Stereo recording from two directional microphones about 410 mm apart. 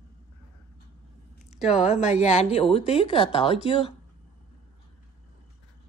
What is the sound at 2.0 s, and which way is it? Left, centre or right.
A woman's voice, centre.